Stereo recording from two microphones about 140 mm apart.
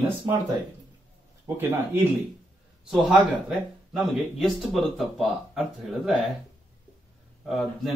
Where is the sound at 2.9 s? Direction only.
5° right (ahead or behind).